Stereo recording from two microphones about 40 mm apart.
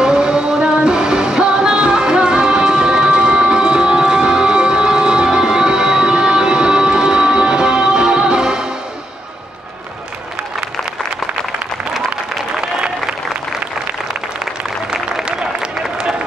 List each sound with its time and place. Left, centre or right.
0.0 s music: right
15.2 s applause: right